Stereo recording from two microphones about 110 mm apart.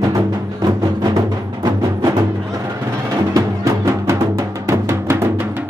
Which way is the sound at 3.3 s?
30° right (ahead or behind).